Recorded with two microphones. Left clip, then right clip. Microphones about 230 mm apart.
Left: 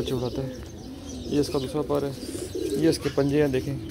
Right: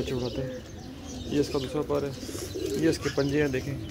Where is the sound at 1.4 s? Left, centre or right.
Centre.